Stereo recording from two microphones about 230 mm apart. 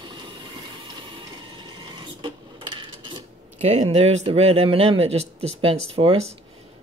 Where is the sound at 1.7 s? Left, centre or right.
Centre.